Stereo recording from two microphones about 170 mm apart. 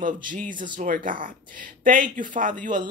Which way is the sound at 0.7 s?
50° right (ahead or behind).